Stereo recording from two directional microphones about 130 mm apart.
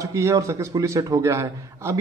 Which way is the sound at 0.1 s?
25° right (ahead or behind).